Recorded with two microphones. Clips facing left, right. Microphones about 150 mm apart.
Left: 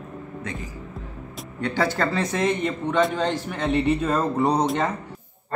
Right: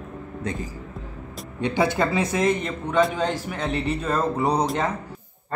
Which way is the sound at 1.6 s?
15° right (ahead or behind).